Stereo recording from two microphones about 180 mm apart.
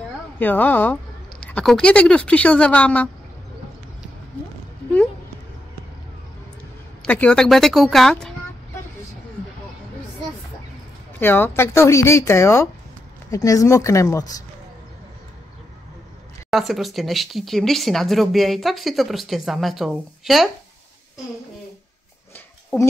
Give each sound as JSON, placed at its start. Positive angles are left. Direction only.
{"t": 0.4, "sound": "speech", "side_deg": 10}
{"t": 7.0, "sound": "speech", "side_deg": 5}
{"t": 11.1, "sound": "speech", "side_deg": 10}
{"t": 16.4, "sound": "speech", "side_deg": 0}